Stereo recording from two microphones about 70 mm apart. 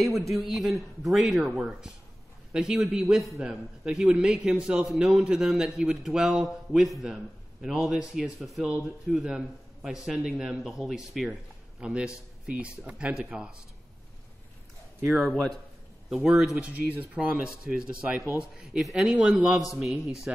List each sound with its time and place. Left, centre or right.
0.0 s a man's voice: centre
15.0 s a man's voice: centre; by 17.3 s right
17.4 s a man's voice: centre
19.0 s a man's voice: centre
19.5 s speech: centre